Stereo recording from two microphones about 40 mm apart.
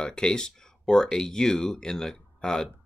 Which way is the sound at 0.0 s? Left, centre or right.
Left.